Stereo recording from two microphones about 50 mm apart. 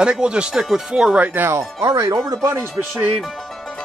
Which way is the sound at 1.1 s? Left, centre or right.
Right.